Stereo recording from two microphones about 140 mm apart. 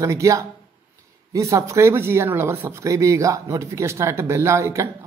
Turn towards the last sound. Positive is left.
turn(degrees=-20)  # may be behind; listen again after turning